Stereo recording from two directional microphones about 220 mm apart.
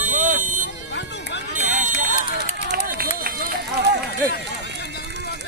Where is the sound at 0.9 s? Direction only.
50° left (ahead or behind).